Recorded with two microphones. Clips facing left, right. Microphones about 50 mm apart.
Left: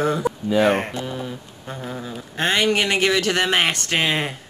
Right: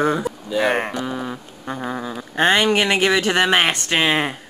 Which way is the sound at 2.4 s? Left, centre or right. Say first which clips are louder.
Right 3 dB; right.